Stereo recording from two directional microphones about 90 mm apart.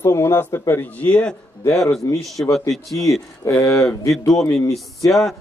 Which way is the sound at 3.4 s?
40° left (ahead or behind).